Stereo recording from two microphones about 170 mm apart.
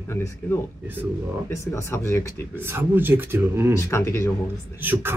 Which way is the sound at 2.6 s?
10° right (ahead or behind).